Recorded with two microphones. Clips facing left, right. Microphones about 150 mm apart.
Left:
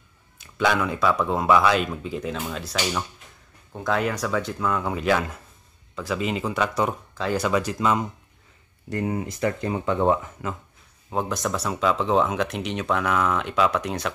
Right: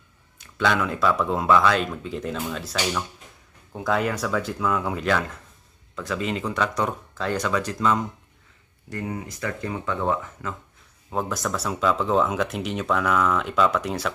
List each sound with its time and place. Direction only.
0.4 s speech: 5° left (ahead or behind)
8.9 s speech: 25° left (ahead or behind)
11.1 s speech: centre (ahead or behind)